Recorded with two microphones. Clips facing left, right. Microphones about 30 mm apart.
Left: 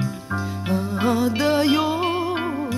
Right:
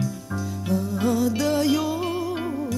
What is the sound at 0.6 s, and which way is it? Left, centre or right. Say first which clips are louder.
Music: left 2 dB; left.